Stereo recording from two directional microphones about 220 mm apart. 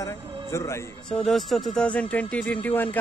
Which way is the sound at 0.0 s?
15° left (ahead or behind).